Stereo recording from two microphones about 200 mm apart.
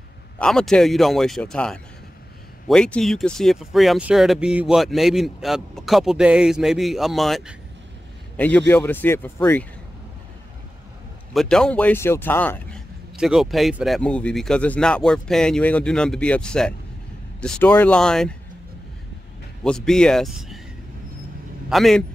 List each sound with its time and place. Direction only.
0.4 s speech: 5° left (ahead or behind)
11.3 s speech: 5° left (ahead or behind)
13.1 s speech: centre (ahead or behind)
19.6 s speech: 5° left (ahead or behind)
21.6 s speech: centre (ahead or behind)